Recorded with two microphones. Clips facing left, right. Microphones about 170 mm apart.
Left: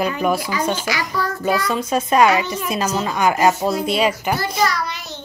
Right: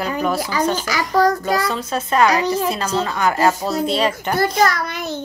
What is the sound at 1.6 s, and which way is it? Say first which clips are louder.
Speech: left 2 dB; 15° left (ahead or behind).